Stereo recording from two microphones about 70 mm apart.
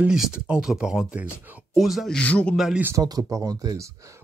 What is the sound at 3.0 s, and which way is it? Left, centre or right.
Speech, right.